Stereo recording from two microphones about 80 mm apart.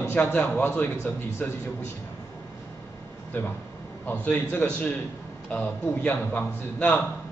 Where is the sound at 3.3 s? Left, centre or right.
Left.